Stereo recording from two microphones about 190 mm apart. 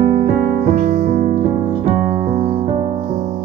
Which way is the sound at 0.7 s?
40° right (ahead or behind).